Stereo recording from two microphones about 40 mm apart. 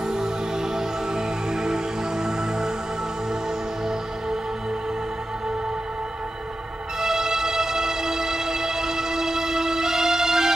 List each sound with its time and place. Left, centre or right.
0.7 s music: centre
7.0 s music: centre